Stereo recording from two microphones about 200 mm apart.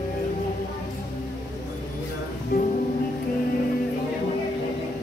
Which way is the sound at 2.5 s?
45° left (ahead or behind).